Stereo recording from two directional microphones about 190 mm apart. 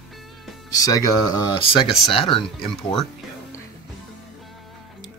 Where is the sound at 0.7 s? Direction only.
20° left (ahead or behind).